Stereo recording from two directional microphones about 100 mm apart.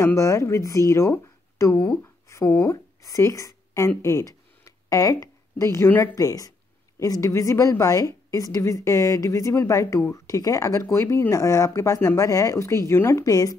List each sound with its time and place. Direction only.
0.0 s a woman's voice: 30° left (ahead or behind)
4.6 s a sound: 35° left (ahead or behind)
6.1 s a woman's voice: 35° left (ahead or behind)